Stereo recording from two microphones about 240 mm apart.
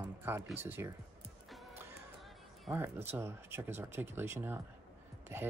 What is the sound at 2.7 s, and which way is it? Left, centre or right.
Speech, centre.